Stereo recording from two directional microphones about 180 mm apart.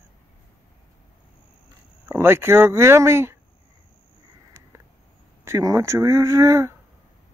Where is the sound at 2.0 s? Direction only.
15° right (ahead or behind).